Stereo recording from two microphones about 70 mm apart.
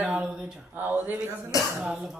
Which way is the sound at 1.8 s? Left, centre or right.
Centre.